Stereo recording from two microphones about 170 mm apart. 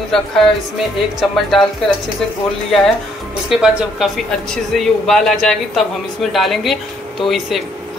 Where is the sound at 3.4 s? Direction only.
Centre (ahead or behind).